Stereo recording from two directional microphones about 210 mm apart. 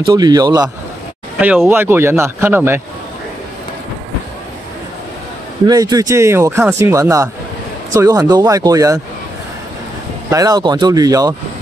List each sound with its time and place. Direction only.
0.0 s speech: 20° right (ahead or behind)
5.7 s speech: 20° right (ahead or behind)
10.3 s speech: 15° right (ahead or behind)